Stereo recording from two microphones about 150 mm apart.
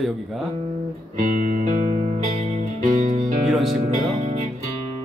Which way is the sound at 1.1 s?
55° right (ahead or behind).